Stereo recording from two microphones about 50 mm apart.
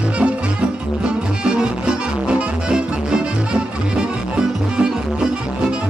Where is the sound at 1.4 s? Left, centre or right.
Centre.